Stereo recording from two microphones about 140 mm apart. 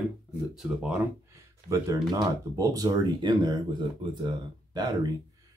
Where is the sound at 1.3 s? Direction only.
20° right (ahead or behind).